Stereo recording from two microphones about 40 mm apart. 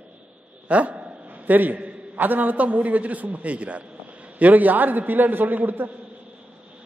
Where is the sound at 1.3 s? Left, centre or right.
Right.